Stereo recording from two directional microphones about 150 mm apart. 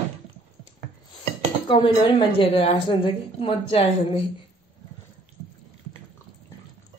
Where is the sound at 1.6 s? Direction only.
30° left (ahead or behind).